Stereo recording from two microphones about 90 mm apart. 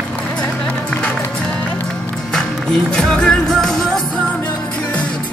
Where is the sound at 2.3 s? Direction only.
10° left (ahead or behind).